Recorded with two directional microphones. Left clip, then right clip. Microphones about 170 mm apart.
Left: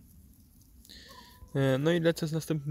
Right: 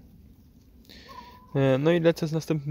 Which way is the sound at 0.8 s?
Centre (ahead or behind).